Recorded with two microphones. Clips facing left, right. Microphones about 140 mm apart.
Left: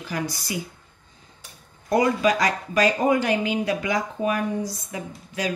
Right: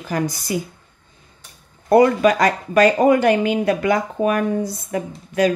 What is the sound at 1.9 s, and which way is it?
Speech, 55° right (ahead or behind).